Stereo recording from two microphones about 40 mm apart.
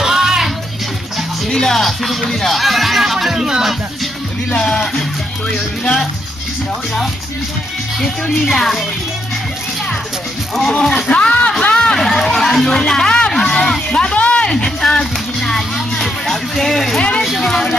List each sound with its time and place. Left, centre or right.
0.0 s music: centre
1.5 s speech: centre
1.8 s speech: centre
4.6 s music: centre
8.0 s speech: centre
11.1 s a sound: left
11.7 s chatter: centre
12.0 s chatter: centre
13.3 s a sound: centre
14.1 s a sound: left
14.5 s a sound: centre
17.4 s music: centre